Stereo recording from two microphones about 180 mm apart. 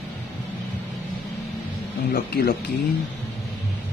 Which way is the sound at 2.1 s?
60° left (ahead or behind).